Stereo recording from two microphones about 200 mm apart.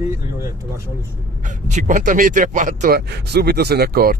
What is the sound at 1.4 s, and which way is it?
Speech, 35° right (ahead or behind).